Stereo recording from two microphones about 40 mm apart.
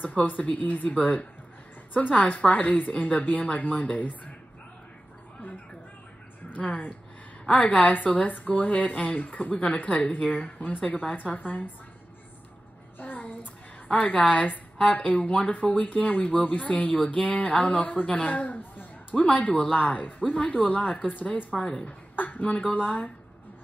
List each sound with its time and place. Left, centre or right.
0.0 s a woman's voice: left
0.9 s a woman's voice: left
6.5 s a woman's voice: left
9.6 s a woman's voice: left
13.0 s child singing: left
14.0 s a woman's voice: left
19.1 s a woman's voice: left